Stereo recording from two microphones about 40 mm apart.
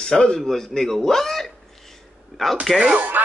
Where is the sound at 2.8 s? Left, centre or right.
Right.